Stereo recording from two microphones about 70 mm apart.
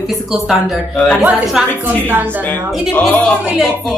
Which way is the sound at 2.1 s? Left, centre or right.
Right.